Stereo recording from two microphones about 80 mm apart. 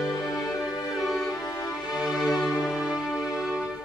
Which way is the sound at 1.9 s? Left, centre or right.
Centre.